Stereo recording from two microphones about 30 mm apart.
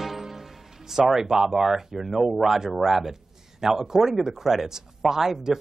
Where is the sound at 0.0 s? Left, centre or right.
Centre.